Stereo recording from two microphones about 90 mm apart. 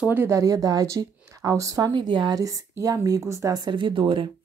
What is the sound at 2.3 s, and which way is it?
Speech, 40° right (ahead or behind).